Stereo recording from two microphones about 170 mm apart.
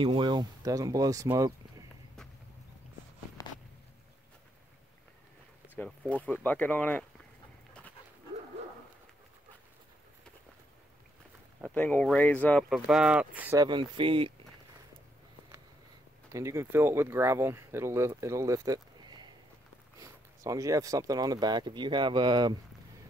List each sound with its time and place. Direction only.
0.0 s speech: 30° right (ahead or behind)
3.4 s a sound: 20° left (ahead or behind)
5.8 s speech: 10° left (ahead or behind)
11.6 s speech: 10° left (ahead or behind); by 13.6 s 10° right (ahead or behind)
13.6 s speech: 25° right (ahead or behind)
16.3 s speech: 20° right (ahead or behind)